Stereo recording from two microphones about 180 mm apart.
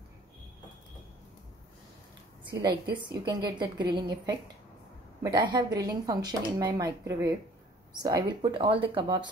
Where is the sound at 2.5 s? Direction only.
25° right (ahead or behind).